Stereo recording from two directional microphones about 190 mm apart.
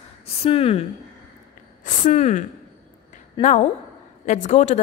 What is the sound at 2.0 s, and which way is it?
A woman's voice, 35° left (ahead or behind).